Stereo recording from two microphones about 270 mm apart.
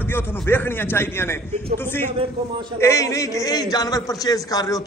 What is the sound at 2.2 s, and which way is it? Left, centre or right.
Speech, centre.